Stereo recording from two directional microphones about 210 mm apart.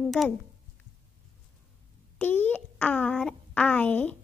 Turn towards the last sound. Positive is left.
turn(degrees=5)  # may be behind; listen again after turning